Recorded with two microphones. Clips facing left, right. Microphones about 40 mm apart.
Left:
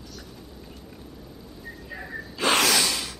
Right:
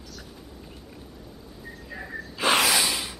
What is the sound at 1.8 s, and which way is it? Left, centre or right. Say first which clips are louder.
Gasp: even; centre.